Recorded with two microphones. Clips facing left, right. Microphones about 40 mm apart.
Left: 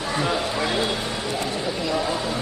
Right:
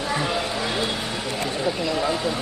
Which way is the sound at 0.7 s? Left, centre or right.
Centre.